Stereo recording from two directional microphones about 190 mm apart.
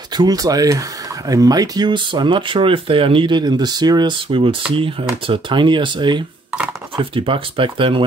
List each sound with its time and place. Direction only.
0.1 s speech: 20° right (ahead or behind)